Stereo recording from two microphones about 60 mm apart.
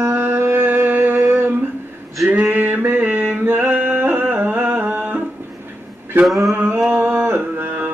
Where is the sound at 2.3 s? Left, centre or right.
Right.